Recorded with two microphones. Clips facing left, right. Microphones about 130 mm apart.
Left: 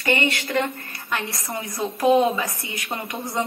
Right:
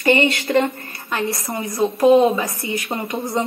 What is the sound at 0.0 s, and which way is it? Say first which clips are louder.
Speech: right 6 dB; 20° right (ahead or behind).